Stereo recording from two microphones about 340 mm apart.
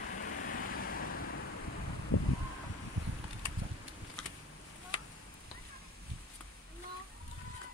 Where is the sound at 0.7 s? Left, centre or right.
Left.